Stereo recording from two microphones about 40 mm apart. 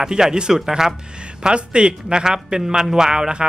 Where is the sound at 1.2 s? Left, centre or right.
Right.